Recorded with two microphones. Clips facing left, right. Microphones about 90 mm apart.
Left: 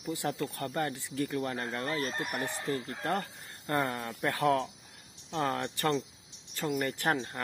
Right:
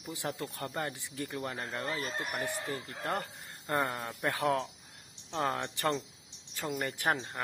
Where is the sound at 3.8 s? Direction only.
10° right (ahead or behind).